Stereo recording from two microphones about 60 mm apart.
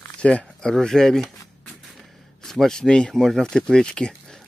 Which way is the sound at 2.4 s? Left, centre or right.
Centre.